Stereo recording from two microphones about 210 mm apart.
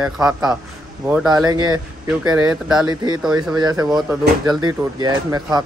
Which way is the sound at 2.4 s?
5° right (ahead or behind).